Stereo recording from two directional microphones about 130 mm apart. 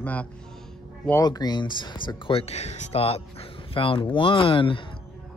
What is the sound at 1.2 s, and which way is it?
Speech, 30° left (ahead or behind).